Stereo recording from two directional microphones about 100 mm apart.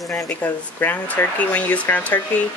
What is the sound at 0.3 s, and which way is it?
Speech, 20° left (ahead or behind).